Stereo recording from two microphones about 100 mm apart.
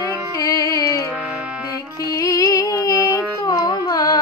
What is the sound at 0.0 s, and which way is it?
Music, 35° left (ahead or behind).